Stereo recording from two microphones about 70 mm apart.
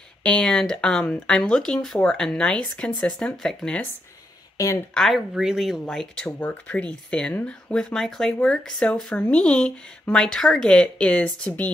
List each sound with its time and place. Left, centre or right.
0.2 s speech: centre
4.9 s speech: centre
6.4 s speech: left